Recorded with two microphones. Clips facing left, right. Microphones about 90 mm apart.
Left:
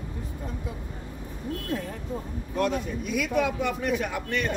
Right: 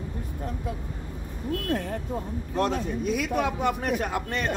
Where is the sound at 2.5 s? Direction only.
35° right (ahead or behind).